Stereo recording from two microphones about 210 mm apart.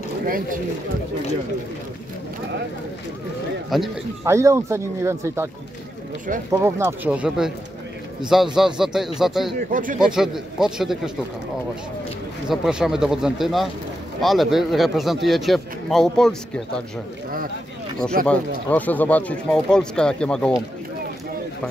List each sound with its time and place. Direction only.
3.7 s speech: centre (ahead or behind)
4.2 s speech: 15° right (ahead or behind)
6.5 s speech: 15° right (ahead or behind)
8.5 s speech: centre (ahead or behind)
9.6 s speech: 40° right (ahead or behind)
9.9 s speech: centre (ahead or behind)
12.4 s speech: 5° right (ahead or behind)
18.2 s speech: 5° left (ahead or behind)